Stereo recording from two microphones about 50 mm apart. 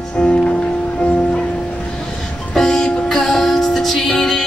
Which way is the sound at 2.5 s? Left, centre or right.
Centre.